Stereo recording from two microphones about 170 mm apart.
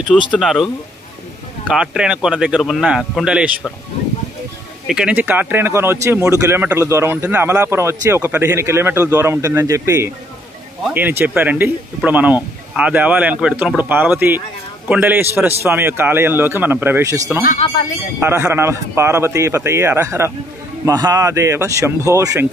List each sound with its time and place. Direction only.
0.3 s speech: centre (ahead or behind)
1.7 s speech: 5° right (ahead or behind)
4.8 s speech: 5° right (ahead or behind)